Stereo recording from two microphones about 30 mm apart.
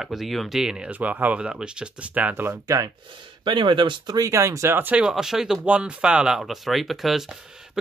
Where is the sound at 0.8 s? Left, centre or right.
Right.